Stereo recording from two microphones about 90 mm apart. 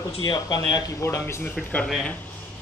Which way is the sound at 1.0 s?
30° left (ahead or behind).